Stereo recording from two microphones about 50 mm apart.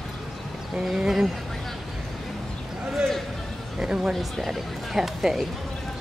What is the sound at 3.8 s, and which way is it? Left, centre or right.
Speech, centre.